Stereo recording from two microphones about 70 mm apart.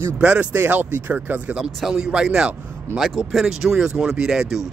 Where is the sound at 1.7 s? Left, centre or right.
Centre.